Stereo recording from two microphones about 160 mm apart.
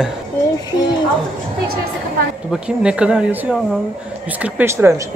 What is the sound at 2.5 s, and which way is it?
Speech, 5° right (ahead or behind).